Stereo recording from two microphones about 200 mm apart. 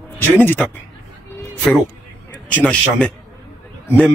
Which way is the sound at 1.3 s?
10° left (ahead or behind).